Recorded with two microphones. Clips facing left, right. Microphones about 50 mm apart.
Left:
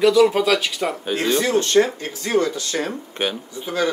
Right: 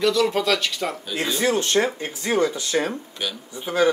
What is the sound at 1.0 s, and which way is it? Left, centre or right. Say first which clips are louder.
Speech: left 6 dB; left.